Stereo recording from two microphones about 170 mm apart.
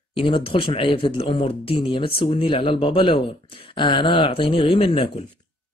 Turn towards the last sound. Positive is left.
turn(degrees=30)  # may be behind; listen again after turning